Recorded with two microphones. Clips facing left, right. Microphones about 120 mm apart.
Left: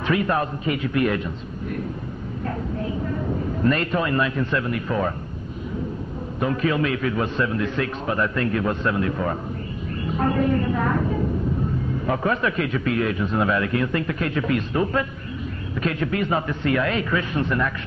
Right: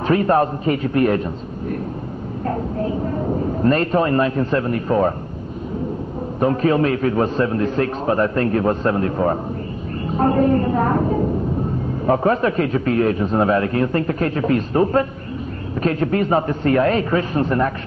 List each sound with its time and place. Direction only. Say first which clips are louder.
0.0 s a man's voice: right 6 dB; 40° right (ahead or behind)
2.4 s a man's voice: right 5 dB; 40° right (ahead or behind)
6.4 s a man's voice: right 6 dB; 40° right (ahead or behind)